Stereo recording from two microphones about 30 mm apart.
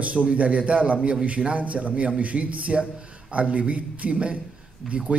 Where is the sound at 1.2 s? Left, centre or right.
Right.